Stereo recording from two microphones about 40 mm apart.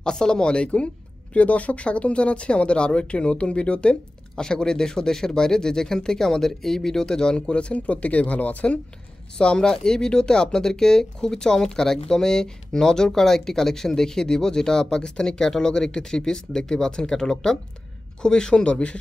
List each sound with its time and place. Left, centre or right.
0.0 s speech: centre
1.3 s speech: left
3.9 s speech: centre; by 8.6 s left
9.4 s speech: left